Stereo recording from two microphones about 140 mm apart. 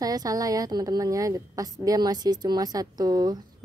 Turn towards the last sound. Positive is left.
turn(degrees=-30)  # may be behind; listen again after turning